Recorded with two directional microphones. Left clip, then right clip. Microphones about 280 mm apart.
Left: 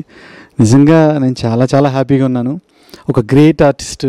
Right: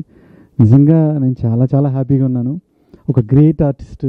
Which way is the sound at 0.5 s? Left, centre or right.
Left.